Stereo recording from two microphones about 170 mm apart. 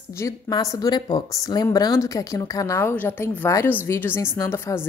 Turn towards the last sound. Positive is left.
turn(degrees=15)  # may be behind; listen again after turning